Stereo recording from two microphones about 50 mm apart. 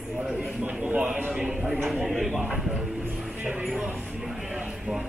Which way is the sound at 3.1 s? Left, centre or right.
Centre.